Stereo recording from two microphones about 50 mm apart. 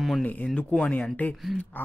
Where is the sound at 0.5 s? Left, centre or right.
Left.